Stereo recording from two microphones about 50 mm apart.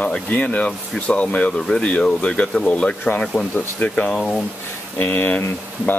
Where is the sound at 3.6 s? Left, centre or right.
Left.